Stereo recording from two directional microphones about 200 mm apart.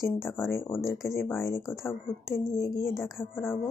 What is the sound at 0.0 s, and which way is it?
Speech, 15° left (ahead or behind).